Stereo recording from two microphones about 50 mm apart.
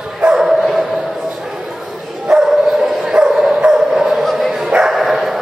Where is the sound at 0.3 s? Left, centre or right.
Centre.